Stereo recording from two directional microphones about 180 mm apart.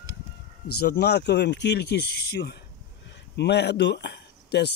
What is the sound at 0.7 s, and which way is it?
Speech, 65° left (ahead or behind).